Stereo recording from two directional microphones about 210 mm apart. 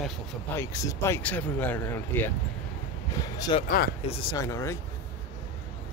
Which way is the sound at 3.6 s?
45° left (ahead or behind).